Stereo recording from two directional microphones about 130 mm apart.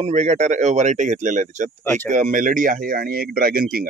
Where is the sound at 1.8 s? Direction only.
15° left (ahead or behind).